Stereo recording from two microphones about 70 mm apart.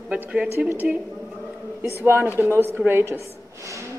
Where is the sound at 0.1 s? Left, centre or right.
Centre.